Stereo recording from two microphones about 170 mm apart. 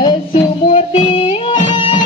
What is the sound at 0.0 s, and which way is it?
Music, 30° left (ahead or behind).